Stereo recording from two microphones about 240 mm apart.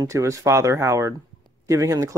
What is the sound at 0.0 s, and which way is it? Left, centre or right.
Speech, centre.